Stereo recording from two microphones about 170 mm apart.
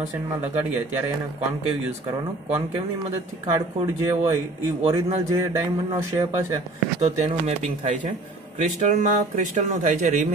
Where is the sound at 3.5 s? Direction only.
20° right (ahead or behind).